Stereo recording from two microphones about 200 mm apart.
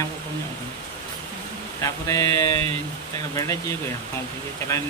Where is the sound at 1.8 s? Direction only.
15° left (ahead or behind).